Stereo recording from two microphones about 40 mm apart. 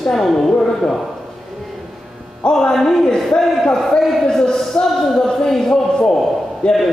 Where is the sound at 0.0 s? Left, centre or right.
Centre.